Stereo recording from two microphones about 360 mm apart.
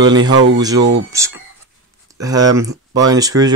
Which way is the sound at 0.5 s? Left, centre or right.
Centre.